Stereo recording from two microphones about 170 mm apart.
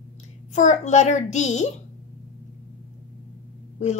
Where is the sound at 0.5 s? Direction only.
45° left (ahead or behind).